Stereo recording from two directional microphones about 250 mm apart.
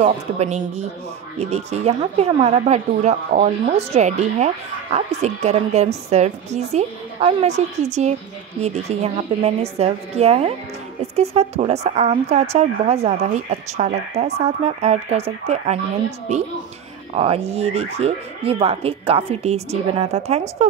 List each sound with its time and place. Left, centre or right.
0.0 s speech: right